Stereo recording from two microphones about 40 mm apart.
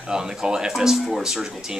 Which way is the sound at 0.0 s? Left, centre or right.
Centre.